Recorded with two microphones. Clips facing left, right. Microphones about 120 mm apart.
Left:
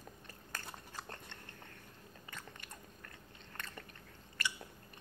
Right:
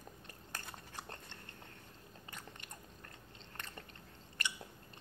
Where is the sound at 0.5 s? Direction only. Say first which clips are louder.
Left 1 dB; 20° right (ahead or behind).